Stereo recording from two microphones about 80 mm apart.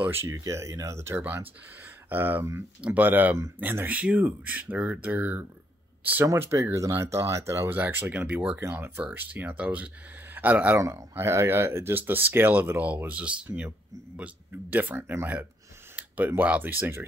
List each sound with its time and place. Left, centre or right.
0.0 s speech: right
0.3 s speech: right
6.2 s speech: right
7.7 s speech: right
8.5 s speech: right
10.8 s speech: right